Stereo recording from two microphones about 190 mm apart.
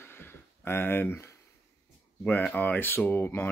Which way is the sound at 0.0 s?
10° left (ahead or behind).